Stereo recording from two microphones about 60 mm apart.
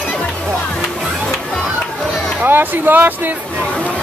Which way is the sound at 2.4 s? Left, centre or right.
Right.